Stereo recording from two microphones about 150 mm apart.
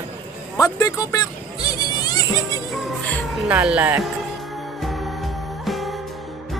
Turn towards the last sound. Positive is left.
turn(degrees=0)  # may be behind; listen again after turning